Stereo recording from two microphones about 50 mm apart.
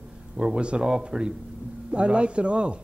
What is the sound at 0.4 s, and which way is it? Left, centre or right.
A man's voice, centre.